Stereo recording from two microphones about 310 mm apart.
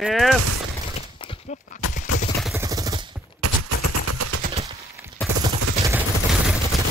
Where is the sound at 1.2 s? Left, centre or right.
Centre.